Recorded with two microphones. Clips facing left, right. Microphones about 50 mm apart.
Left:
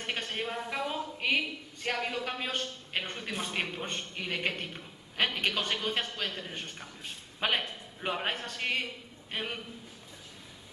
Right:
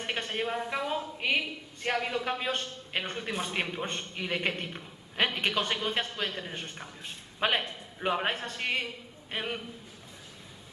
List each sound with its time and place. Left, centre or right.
0.0 s a sound: centre
1.2 s a woman's voice: centre
7.3 s a man's voice: centre